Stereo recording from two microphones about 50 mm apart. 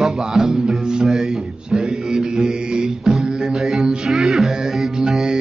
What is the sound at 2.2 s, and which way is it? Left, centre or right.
Music, centre.